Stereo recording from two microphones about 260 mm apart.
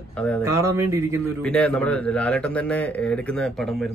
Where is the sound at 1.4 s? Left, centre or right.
Centre.